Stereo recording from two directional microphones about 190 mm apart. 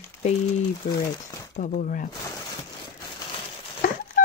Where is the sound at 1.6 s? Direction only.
45° left (ahead or behind).